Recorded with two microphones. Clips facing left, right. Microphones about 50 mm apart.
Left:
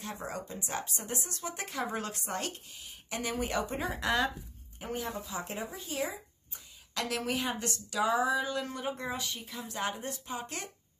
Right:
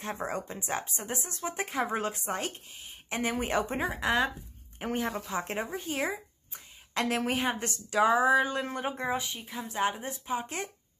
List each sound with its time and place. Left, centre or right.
0.0 s speech: right
4.7 s speech: right